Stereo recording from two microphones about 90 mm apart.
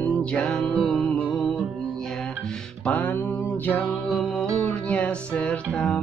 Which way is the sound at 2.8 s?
15° left (ahead or behind).